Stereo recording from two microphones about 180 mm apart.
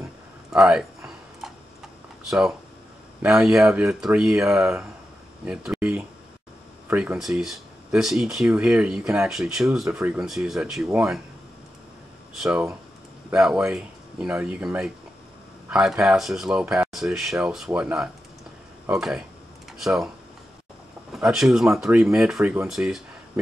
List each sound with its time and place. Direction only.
0.5 s a sound: 5° right (ahead or behind)
2.2 s speech: 5° right (ahead or behind)
12.4 s speech: 5° right (ahead or behind)
21.1 s speech: 5° right (ahead or behind)